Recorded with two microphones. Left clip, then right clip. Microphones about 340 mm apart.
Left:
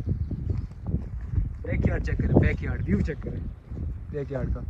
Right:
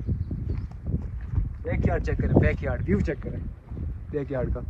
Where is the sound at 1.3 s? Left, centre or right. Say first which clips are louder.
Even; centre.